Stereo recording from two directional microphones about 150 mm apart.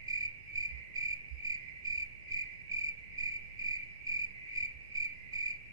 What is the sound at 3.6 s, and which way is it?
Cricket, 25° right (ahead or behind).